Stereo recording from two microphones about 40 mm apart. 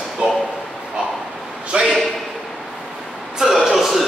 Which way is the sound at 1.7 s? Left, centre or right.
Right.